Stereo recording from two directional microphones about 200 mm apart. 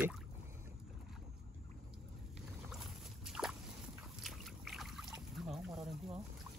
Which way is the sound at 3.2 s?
Centre (ahead or behind).